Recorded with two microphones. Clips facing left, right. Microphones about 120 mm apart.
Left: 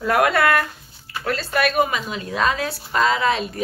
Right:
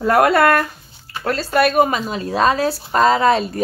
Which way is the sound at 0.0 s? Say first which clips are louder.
Right 4 dB; 40° right (ahead or behind).